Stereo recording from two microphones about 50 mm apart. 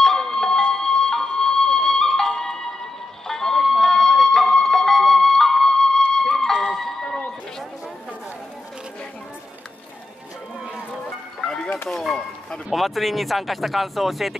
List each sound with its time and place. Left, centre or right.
0.0 s music: centre
11.4 s music: centre
11.9 s a sound: centre
12.7 s speech: centre